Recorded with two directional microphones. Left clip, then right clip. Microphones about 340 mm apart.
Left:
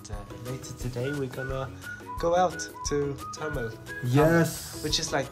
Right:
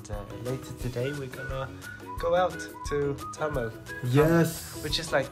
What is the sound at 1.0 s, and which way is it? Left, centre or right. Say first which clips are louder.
Speech: left 2 dB; centre.